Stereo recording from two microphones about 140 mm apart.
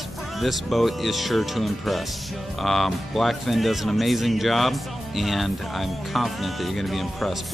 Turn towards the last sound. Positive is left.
turn(degrees=0)  # may be behind; listen again after turning